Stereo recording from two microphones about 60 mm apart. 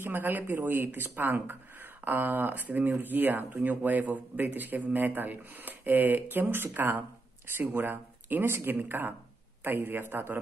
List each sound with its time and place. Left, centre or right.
0.0 s a man's voice: right